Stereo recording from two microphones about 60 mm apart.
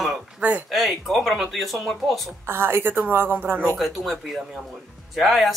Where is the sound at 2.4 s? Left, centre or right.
Right.